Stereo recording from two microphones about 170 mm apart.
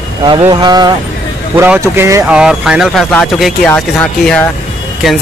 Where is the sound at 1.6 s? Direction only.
10° right (ahead or behind).